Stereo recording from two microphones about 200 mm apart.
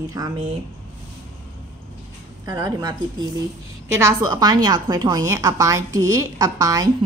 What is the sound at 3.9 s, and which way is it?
A woman's voice, 15° right (ahead or behind).